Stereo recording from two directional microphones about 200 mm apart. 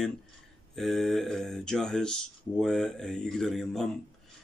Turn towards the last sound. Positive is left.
turn(degrees=0)  # may be behind; listen again after turning